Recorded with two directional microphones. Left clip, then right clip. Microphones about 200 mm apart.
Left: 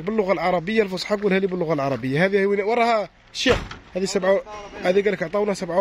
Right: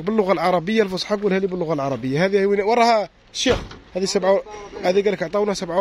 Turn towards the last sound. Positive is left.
turn(degrees=0)  # may be behind; listen again after turning